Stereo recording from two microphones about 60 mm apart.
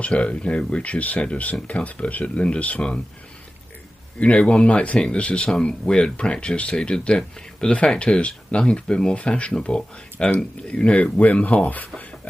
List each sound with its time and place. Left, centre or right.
0.0 s speech: left
4.2 s speech: centre